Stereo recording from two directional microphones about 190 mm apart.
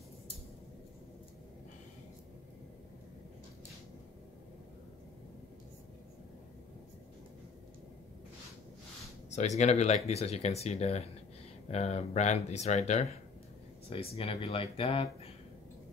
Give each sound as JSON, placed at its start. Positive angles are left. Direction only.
{"t": 9.3, "sound": "speech", "side_deg": 35}